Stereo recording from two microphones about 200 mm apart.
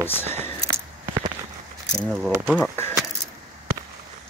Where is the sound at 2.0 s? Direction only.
5° right (ahead or behind).